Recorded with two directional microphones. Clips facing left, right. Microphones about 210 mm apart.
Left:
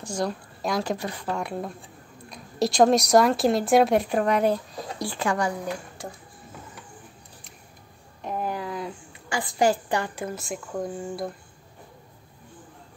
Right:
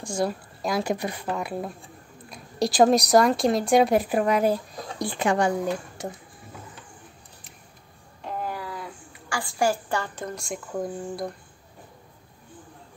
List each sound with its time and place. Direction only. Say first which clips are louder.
0.0 s a woman's voice: right 2 dB; 10° right (ahead or behind)
4.9 s speech: right 3 dB; 20° right (ahead or behind)
8.2 s a sound: left 2 dB; 15° left (ahead or behind)